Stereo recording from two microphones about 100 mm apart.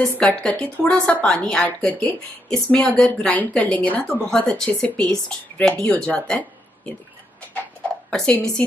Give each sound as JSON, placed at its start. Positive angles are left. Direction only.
{"t": 0.0, "sound": "speech", "side_deg": 10}
{"t": 8.1, "sound": "speech", "side_deg": 10}